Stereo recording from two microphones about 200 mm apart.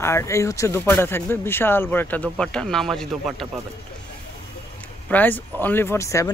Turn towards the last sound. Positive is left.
turn(degrees=15)  # may be behind; listen again after turning